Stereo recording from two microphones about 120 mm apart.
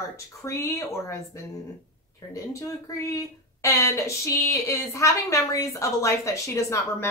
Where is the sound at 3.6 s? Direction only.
25° left (ahead or behind).